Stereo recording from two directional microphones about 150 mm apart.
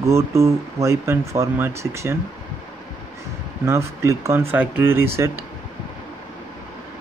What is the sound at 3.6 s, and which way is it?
Speech, 20° right (ahead or behind).